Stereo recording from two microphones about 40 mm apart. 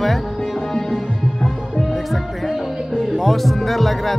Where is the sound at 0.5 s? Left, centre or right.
Centre.